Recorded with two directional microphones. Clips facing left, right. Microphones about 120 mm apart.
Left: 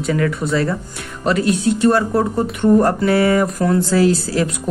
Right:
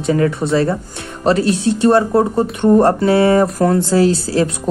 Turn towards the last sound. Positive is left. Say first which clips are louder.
# right 2 dB
turn(degrees=-30)  # may be behind; listen again after turning